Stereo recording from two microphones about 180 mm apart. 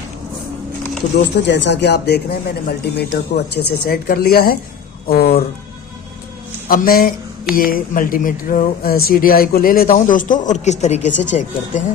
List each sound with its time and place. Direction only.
1.1 s speech: 75° left (ahead or behind); by 5.4 s 55° left (ahead or behind)
6.7 s speech: 55° left (ahead or behind)